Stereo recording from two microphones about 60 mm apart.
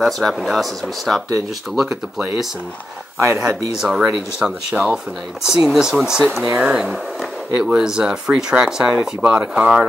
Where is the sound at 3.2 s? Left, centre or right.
Right.